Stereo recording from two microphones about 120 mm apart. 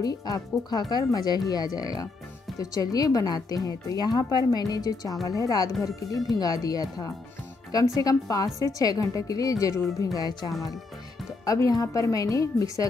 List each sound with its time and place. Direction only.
0.0 s a woman's voice: 30° left (ahead or behind)